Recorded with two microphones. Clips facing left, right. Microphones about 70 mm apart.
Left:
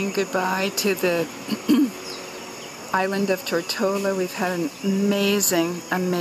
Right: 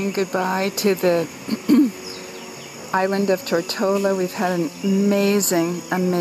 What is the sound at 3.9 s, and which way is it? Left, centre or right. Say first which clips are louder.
Speech: right 5 dB; centre.